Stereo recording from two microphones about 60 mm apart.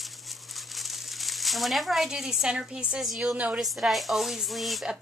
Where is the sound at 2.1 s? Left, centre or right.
Centre.